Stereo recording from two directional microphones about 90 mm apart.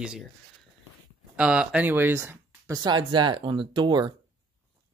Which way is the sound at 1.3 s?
15° right (ahead or behind).